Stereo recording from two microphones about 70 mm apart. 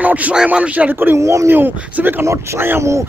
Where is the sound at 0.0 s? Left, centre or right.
Right.